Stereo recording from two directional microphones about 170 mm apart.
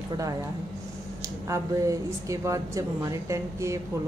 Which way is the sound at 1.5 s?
20° right (ahead or behind).